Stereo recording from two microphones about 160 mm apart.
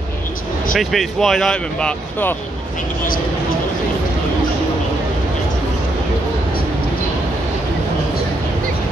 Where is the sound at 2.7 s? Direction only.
60° left (ahead or behind).